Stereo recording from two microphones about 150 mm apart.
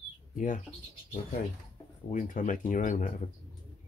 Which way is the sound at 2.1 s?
60° left (ahead or behind).